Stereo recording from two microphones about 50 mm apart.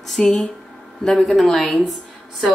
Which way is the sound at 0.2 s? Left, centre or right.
Centre.